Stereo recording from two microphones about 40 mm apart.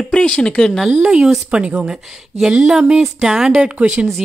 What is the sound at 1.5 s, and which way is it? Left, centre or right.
Speech, right.